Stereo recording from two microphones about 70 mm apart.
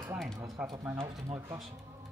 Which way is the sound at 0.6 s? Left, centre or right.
Centre.